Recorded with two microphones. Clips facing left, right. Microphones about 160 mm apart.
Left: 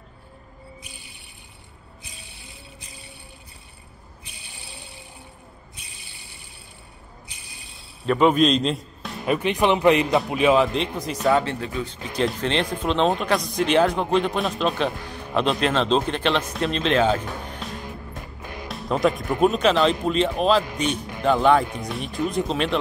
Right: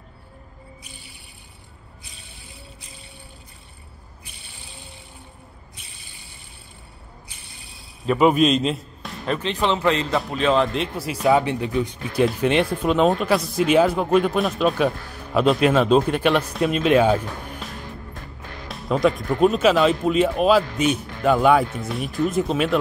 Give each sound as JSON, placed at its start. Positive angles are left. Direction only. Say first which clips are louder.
{"t": 8.1, "sound": "a man's voice", "louder": "right 1 dB", "side_deg": -5}
{"t": 9.2, "sound": "speech", "louder": "left 2 dB", "side_deg": 10}
{"t": 11.4, "sound": "speech", "louder": "right 5 dB", "side_deg": -15}
{"t": 17.6, "sound": "music", "louder": "left 2 dB", "side_deg": 0}
{"t": 18.4, "sound": "music", "louder": "left 4 dB", "side_deg": 15}
{"t": 18.7, "sound": "music", "louder": "right 2 dB", "side_deg": 0}
{"t": 19.4, "sound": "speech", "louder": "right 2 dB", "side_deg": 0}